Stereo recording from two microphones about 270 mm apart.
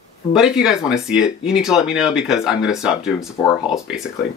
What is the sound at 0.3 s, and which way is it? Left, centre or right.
Speech, centre.